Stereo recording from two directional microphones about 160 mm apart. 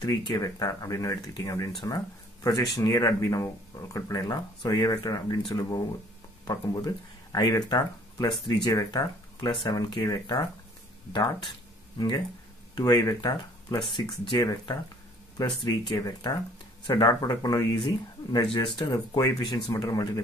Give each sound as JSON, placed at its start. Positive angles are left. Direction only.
{"t": 0.0, "sound": "speech", "side_deg": 25}
{"t": 12.7, "sound": "speech", "side_deg": 25}
{"t": 15.9, "sound": "speech", "side_deg": 25}